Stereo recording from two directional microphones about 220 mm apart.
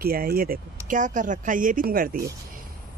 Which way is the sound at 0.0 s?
45° right (ahead or behind).